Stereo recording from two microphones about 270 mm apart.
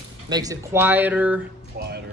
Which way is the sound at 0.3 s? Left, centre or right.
Centre.